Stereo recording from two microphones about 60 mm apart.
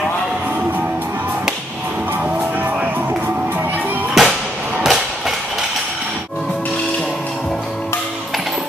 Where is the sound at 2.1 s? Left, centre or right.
Right.